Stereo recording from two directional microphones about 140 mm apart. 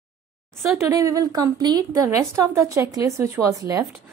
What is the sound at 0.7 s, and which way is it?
A woman's voice, 20° right (ahead or behind).